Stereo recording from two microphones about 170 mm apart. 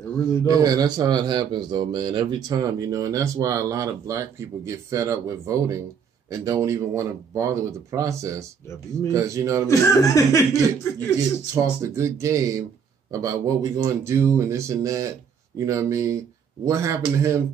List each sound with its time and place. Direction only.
0.5 s a man's voice: 20° right (ahead or behind)
9.7 s speech: 20° left (ahead or behind)
11.8 s speech: 15° right (ahead or behind)